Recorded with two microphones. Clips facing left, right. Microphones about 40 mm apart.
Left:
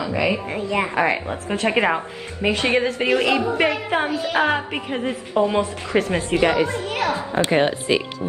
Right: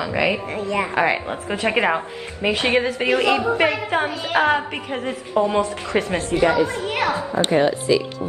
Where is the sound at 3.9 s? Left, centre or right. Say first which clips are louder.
Even; centre.